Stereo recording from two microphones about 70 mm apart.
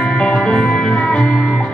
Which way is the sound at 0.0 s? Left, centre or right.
Centre.